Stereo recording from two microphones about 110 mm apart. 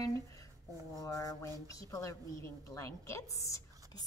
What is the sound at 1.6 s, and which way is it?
A woman's voice, 30° left (ahead or behind).